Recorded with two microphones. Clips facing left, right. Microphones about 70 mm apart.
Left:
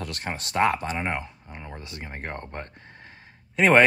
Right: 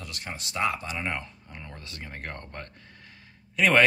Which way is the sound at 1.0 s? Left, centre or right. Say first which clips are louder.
Left 3 dB; left.